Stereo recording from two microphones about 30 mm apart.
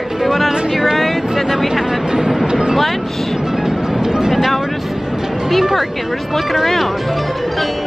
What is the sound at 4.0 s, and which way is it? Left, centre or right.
Vehicle, right.